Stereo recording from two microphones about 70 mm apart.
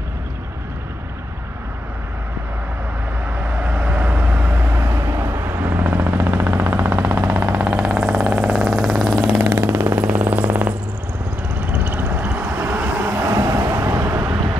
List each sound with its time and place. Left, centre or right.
3.3 s vehicle: right
4.7 s vehicle: right
5.7 s vehicle: right
7.6 s vehicle: centre
8.5 s vehicle: centre
9.2 s vehicle: right
9.9 s vehicle: right
10.3 s purr: right
11.7 s vehicle: right
13.1 s vehicle: right